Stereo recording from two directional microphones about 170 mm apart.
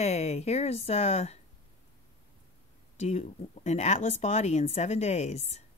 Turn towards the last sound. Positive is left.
turn(degrees=40)  # may be behind; listen again after turning